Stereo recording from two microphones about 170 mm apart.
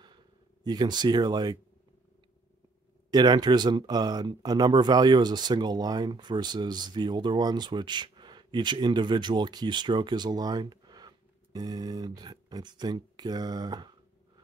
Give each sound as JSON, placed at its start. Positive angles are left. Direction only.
{"t": 0.7, "sound": "speech", "side_deg": -25}
{"t": 3.1, "sound": "speech", "side_deg": -25}